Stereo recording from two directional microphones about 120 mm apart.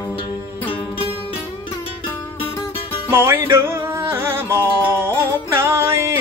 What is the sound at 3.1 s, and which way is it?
Music, 20° right (ahead or behind).